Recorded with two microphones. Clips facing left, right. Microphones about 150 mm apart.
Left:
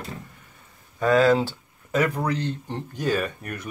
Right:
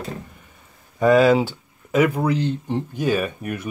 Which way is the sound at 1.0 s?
10° right (ahead or behind).